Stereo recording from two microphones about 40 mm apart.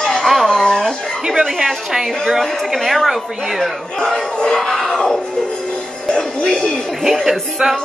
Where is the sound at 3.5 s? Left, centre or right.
Centre.